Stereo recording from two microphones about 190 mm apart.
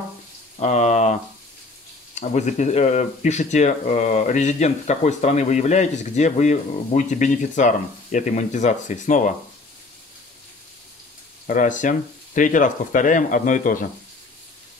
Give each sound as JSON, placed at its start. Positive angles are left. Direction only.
{"t": 0.6, "sound": "a sound", "side_deg": 35}
{"t": 2.1, "sound": "speech", "side_deg": 40}
{"t": 11.4, "sound": "speech", "side_deg": 40}